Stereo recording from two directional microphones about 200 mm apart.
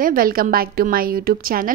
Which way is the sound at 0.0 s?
45° right (ahead or behind).